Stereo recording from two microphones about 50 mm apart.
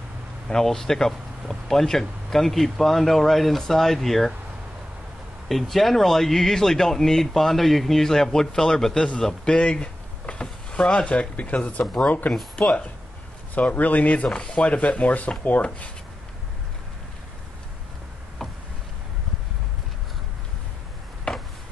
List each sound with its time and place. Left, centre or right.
0.5 s speech: centre
5.5 s speech: centre; by 10.4 s left
10.4 s a sound: centre
11.1 s speech: left
11.8 s speech: centre
13.6 s speech: left
18.4 s tick: centre